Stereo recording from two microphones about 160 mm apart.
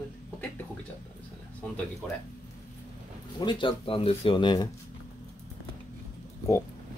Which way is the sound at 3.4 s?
30° left (ahead or behind).